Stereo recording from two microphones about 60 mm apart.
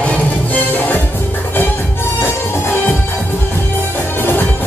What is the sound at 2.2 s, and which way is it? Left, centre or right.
Music, left.